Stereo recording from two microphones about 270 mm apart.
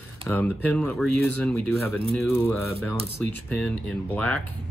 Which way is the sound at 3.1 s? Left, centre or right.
Right.